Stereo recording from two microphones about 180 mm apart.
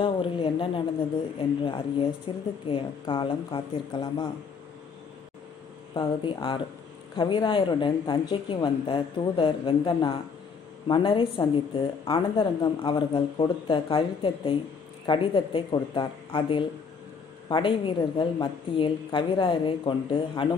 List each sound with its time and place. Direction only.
0.0 s a woman's voice: 30° left (ahead or behind)
5.9 s speech: 25° left (ahead or behind)